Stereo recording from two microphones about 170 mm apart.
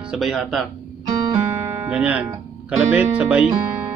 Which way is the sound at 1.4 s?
15° right (ahead or behind).